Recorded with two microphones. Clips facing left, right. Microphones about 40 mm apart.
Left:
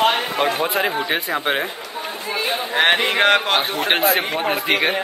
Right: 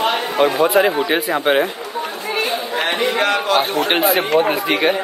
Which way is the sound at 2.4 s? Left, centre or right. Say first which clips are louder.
Left 5 dB; left.